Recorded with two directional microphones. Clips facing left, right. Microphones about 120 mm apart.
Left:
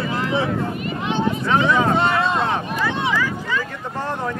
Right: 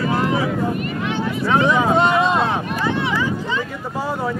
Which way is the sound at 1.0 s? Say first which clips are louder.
Left 5 dB; 20° left (ahead or behind).